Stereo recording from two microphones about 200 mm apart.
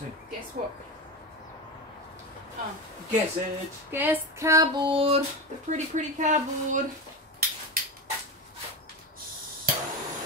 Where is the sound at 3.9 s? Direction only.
10° right (ahead or behind); by 5.2 s 25° right (ahead or behind).